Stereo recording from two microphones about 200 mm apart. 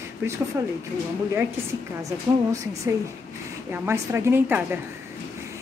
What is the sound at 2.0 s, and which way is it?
A woman's voice, 15° right (ahead or behind).